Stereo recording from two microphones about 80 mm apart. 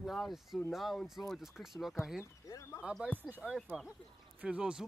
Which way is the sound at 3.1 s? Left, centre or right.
Right.